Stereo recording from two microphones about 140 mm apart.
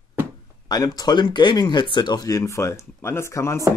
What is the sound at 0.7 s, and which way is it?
Speech, 25° left (ahead or behind).